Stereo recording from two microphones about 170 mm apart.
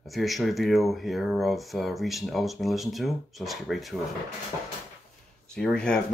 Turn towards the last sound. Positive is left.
turn(degrees=5)  # may be behind; listen again after turning